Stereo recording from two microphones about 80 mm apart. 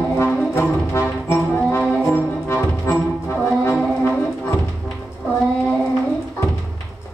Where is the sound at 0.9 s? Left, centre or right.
Left.